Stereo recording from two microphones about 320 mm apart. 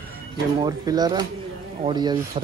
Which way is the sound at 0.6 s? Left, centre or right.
Centre.